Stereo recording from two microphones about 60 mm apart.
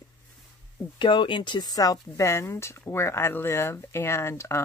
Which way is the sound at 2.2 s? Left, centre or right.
Left.